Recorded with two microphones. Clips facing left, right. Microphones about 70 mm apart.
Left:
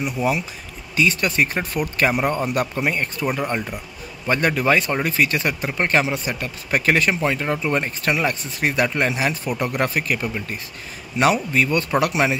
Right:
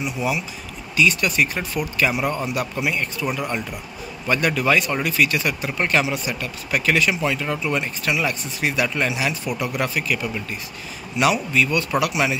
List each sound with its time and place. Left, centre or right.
0.0 s speech: left